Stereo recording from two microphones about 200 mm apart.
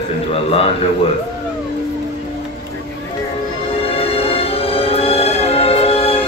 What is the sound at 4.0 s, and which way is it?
Music, 30° left (ahead or behind).